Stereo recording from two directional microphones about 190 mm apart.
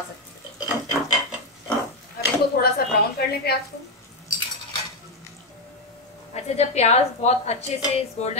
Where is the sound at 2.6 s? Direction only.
50° left (ahead or behind).